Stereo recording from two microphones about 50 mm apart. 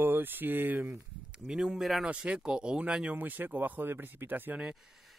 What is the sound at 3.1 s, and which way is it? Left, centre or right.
Speech, right.